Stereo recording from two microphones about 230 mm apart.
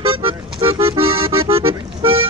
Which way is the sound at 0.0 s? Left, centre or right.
Right.